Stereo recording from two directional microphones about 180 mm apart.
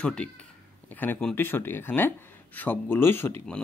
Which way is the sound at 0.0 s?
5° left (ahead or behind).